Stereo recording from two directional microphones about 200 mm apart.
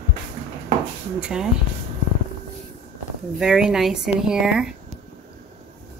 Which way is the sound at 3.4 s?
5° right (ahead or behind).